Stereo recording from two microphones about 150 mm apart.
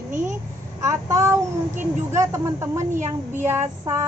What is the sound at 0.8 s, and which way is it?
A woman's voice, 20° right (ahead or behind).